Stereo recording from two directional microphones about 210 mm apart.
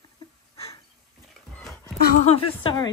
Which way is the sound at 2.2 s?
25° left (ahead or behind).